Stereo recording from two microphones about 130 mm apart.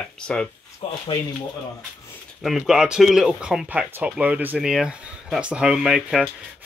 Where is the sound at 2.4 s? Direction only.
Centre (ahead or behind).